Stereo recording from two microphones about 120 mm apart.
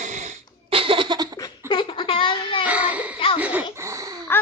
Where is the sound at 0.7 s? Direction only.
50° right (ahead or behind).